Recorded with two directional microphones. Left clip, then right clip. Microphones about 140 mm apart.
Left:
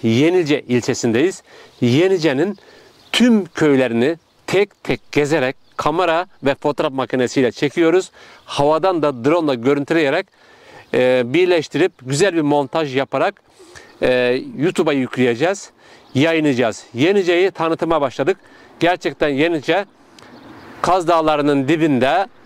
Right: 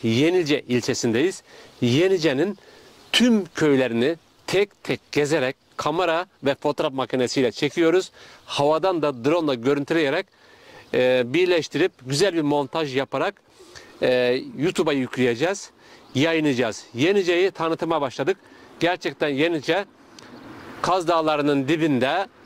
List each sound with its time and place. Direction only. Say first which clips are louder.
0.0 s speech: left 5 dB; 45° left (ahead or behind)
20.3 s a sound: left 1 dB; 10° left (ahead or behind)
20.8 s speech: left 6 dB; 45° left (ahead or behind)